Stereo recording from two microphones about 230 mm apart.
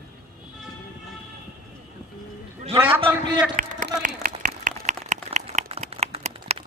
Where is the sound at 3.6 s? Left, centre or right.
Right.